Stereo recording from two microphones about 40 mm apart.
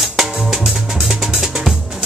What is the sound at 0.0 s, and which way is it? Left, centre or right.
Music, centre.